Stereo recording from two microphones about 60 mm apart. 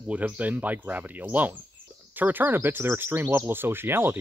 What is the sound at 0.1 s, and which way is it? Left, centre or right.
Speech, right.